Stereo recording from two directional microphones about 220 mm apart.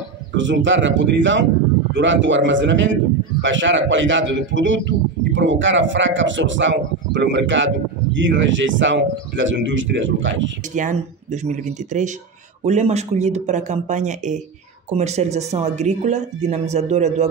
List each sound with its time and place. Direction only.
0.3 s a man's voice: 55° right (ahead or behind)
10.7 s speech: 35° right (ahead or behind)